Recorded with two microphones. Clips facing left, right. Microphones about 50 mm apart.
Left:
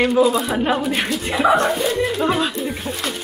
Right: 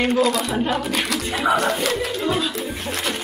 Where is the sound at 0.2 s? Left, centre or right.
Right.